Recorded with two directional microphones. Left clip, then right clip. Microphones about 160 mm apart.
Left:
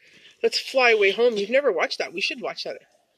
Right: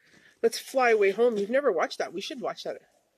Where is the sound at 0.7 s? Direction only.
15° right (ahead or behind).